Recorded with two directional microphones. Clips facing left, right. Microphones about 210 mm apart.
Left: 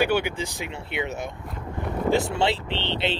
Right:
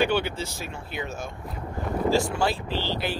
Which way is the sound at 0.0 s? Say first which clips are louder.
Left 1 dB; 10° left (ahead or behind).